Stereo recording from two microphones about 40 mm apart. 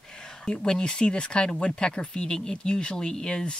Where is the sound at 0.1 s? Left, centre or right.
Centre.